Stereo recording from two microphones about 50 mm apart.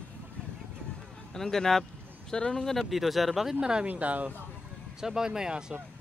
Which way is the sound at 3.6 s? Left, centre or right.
Centre.